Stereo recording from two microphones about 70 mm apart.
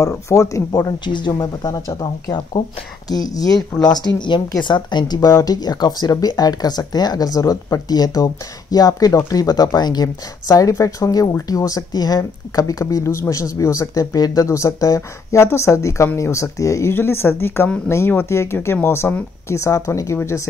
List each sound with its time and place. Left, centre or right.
0.0 s speech: left
0.7 s speech: left
1.6 s speech: left
3.8 s speech: left
5.3 s speech: left
9.8 s speech: left
10.5 s speech: left
14.1 s speech: left
15.3 s speech: left
16.9 s speech: left
19.5 s speech: left